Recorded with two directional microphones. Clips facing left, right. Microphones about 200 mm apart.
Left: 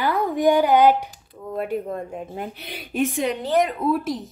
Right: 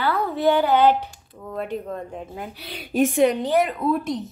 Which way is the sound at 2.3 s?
20° left (ahead or behind).